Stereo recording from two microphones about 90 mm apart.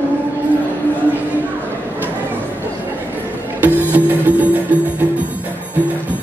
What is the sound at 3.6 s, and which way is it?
Music, 20° right (ahead or behind).